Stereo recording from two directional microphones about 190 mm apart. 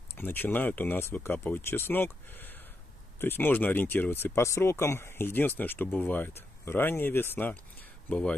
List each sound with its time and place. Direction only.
0.1 s speech: 10° left (ahead or behind)